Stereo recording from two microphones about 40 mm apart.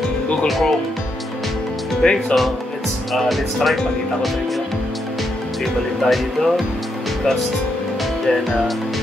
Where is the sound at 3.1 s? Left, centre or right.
Centre.